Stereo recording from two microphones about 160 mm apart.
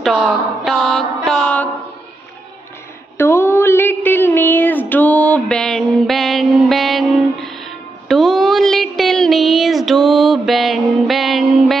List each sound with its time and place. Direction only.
0.0 s mantra: centre (ahead or behind)
3.2 s mantra: 15° left (ahead or behind); by 11.7 s centre (ahead or behind)